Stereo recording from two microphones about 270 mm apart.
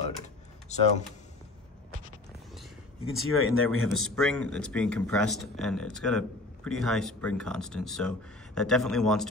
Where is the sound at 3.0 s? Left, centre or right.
Right.